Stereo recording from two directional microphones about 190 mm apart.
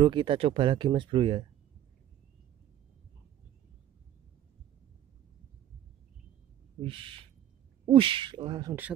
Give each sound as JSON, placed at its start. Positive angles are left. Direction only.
{"t": 0.0, "sound": "speech", "side_deg": -25}
{"t": 6.8, "sound": "speech", "side_deg": -25}